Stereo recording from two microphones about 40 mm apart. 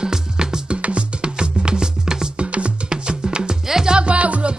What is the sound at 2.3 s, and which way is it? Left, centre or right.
Music, right.